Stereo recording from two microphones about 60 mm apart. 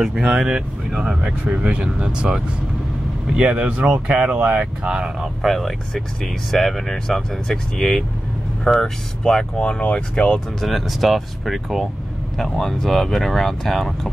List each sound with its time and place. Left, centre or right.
0.3 s speech: centre
1.5 s speech: right
5.4 s speech: centre
10.6 s speech: centre